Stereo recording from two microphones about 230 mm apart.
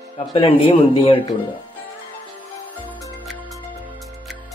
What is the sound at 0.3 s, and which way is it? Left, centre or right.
Speech, left.